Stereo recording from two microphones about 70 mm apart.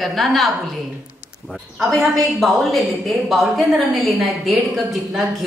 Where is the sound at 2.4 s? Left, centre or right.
Centre.